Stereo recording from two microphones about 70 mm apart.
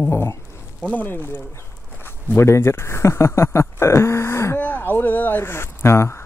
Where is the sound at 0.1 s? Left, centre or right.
Left.